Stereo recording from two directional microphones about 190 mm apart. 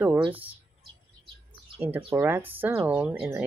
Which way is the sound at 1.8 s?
10° right (ahead or behind).